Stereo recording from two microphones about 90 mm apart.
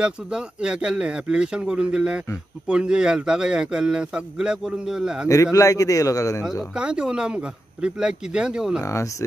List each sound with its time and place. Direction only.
0.0 s a man's voice: 10° right (ahead or behind)
5.3 s a man's voice: 35° left (ahead or behind)
6.7 s a man's voice: 10° right (ahead or behind)